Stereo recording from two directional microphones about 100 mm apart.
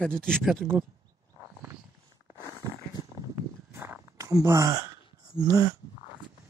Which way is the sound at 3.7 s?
25° right (ahead or behind).